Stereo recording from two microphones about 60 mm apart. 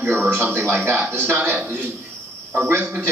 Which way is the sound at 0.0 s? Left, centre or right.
Right.